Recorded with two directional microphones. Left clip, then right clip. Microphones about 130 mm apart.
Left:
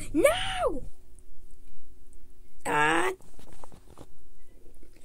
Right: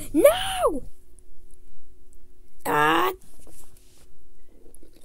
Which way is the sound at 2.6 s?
20° right (ahead or behind).